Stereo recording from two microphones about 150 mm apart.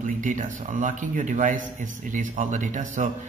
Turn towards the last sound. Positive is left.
turn(degrees=-55)  # may be behind; listen again after turning